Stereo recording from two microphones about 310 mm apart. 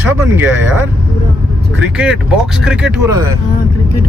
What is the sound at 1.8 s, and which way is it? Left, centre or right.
Speech, centre.